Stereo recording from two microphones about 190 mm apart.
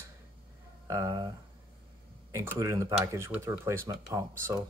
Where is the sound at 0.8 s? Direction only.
15° right (ahead or behind).